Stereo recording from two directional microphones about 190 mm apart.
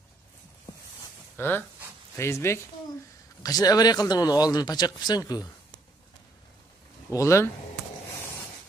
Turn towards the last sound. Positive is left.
turn(degrees=15)  # may be behind; listen again after turning